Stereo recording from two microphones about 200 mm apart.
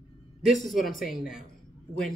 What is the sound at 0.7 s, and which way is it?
Speech, centre (ahead or behind).